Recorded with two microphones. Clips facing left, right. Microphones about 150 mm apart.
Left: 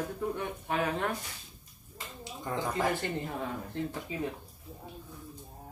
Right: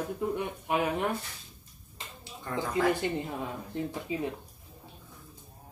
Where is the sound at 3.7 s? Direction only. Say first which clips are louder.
Right 2 dB; 15° right (ahead or behind).